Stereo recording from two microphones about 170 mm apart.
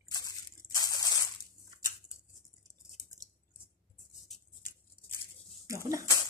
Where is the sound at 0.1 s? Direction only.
25° left (ahead or behind).